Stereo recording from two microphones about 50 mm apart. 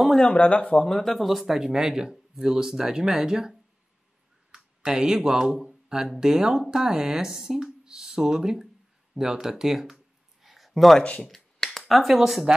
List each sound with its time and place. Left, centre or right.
0.3 s speech: left
0.7 s speech: centre
9.1 s a sound: centre
11.0 s speech: centre
11.2 s finger snapping: centre
11.9 s speech: centre